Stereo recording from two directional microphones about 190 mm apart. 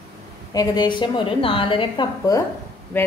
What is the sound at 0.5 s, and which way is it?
A woman's voice, 25° left (ahead or behind).